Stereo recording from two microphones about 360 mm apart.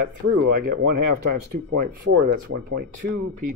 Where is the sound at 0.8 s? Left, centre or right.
Right.